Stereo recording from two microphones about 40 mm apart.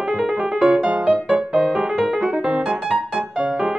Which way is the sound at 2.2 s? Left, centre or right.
Right.